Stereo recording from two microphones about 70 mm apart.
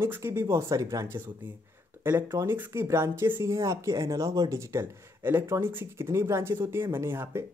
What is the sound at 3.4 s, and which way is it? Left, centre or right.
Speech, right.